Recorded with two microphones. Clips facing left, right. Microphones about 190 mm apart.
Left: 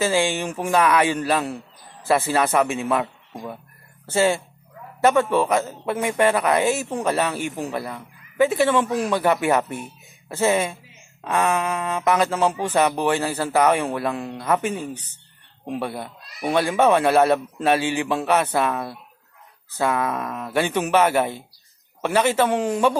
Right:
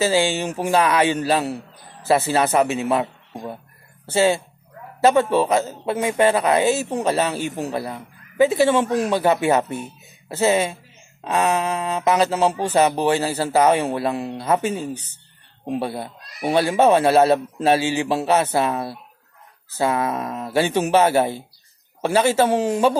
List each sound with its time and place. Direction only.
0.0 s speech: 25° right (ahead or behind)
5.0 s speech: 25° right (ahead or behind)